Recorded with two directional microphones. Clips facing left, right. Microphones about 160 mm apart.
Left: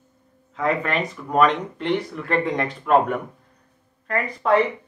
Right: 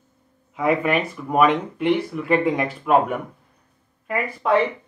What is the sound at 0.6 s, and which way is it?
Speech, 10° right (ahead or behind).